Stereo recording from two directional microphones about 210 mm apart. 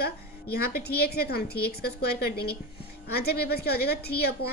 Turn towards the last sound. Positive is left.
turn(degrees=50)  # may be behind; listen again after turning